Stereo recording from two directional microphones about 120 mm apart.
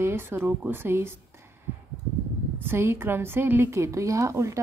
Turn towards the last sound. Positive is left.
turn(degrees=-25)  # may be behind; listen again after turning